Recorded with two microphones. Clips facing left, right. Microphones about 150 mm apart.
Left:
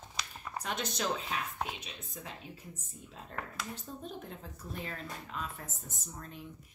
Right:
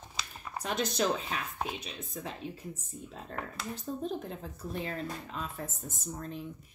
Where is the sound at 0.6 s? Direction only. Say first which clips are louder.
Right 6 dB; 35° right (ahead or behind).